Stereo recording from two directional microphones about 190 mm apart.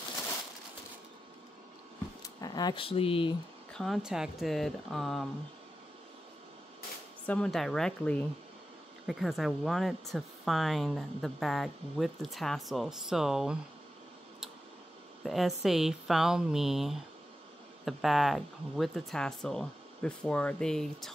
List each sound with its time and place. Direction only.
2.2 s speech: 20° left (ahead or behind)
3.7 s speech: centre (ahead or behind)
7.2 s speech: 5° left (ahead or behind)
15.2 s speech: centre (ahead or behind)